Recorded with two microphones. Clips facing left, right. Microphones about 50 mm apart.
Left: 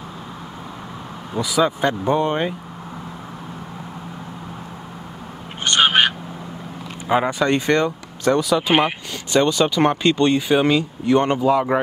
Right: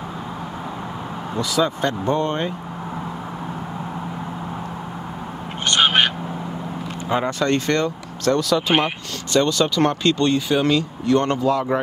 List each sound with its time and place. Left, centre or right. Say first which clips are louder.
1.3 s speech: left 2 dB; centre
5.7 s a sound: left 1 dB; centre
7.1 s speech: left 2 dB; centre